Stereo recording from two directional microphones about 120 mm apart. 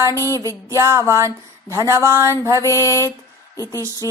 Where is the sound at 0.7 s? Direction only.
25° right (ahead or behind).